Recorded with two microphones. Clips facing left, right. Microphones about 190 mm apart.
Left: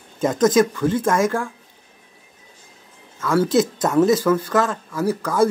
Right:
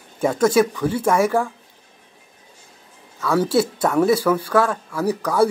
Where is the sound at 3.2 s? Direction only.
10° right (ahead or behind).